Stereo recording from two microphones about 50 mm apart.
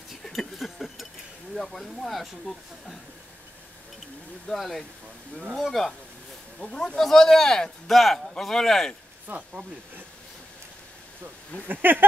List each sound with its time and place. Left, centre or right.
0.2 s a sound: centre
1.5 s speech: centre
4.6 s speech: centre
6.6 s speech: centre
7.0 s speech: centre
9.3 s speech: right
11.6 s speech: right